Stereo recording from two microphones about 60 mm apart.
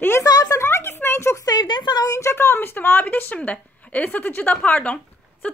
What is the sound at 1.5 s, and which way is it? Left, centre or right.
Speech, left.